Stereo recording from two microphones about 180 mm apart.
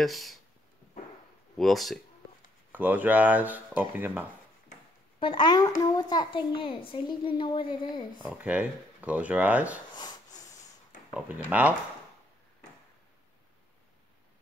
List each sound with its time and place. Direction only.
0.0 s speech: centre (ahead or behind)
1.6 s speech: centre (ahead or behind)
2.7 s speech: 10° right (ahead or behind)
5.2 s a child's voice: 25° left (ahead or behind)
8.2 s speech: 5° right (ahead or behind)
9.9 s snort: 20° left (ahead or behind)
11.1 s speech: 5° right (ahead or behind)